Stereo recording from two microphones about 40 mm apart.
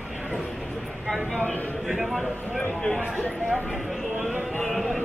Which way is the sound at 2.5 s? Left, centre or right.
Centre.